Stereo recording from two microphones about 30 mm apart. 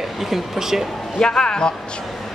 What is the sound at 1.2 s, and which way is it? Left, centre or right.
Speech, left.